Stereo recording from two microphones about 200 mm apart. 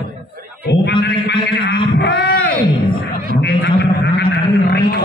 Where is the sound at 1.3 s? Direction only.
50° left (ahead or behind).